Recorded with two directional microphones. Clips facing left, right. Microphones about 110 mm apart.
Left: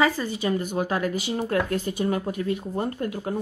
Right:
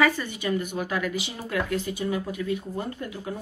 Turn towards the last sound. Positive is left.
turn(degrees=50)  # may be behind; listen again after turning